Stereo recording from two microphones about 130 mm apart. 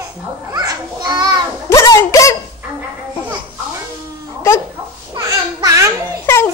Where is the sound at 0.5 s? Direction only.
30° right (ahead or behind).